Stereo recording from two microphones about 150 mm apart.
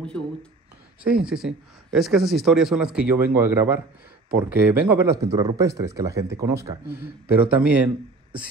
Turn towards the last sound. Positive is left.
turn(degrees=-10)  # may be behind; listen again after turning